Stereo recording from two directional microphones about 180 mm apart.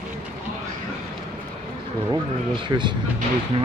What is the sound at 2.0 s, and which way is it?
Speech, 25° right (ahead or behind).